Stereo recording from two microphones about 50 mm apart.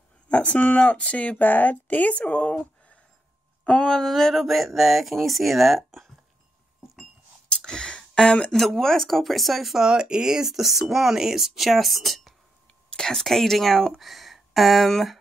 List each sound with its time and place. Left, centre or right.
0.3 s speech: left
1.4 s speech: left; by 6.1 s centre
7.4 s a sound: centre
8.5 s speech: centre
9.8 s speech: centre
12.9 s speech: centre